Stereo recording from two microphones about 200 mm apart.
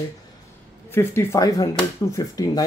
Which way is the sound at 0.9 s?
15° left (ahead or behind).